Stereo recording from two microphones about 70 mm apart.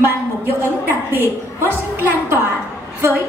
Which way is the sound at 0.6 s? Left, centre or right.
Right.